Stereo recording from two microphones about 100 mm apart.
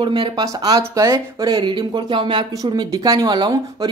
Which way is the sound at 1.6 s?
50° right (ahead or behind).